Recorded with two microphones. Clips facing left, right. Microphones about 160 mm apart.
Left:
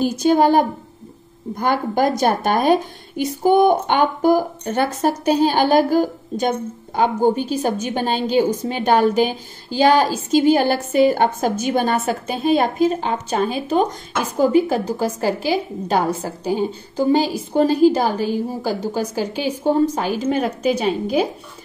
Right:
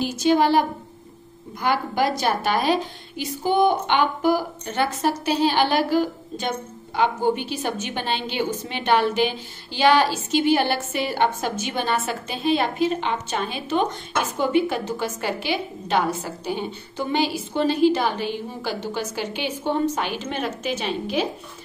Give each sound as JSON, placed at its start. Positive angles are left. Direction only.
{"t": 0.0, "sound": "a woman's voice", "side_deg": 50}